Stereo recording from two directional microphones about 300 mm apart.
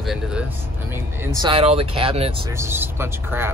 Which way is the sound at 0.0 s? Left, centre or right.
Centre.